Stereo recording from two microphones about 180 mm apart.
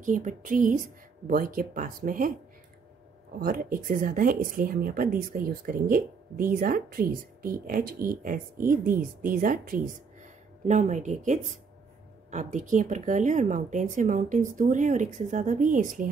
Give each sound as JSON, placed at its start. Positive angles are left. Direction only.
{"t": 0.0, "sound": "speech", "side_deg": -45}
{"t": 3.3, "sound": "speech", "side_deg": -55}